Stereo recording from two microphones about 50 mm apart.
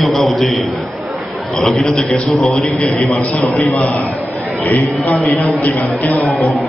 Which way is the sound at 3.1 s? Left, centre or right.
Left.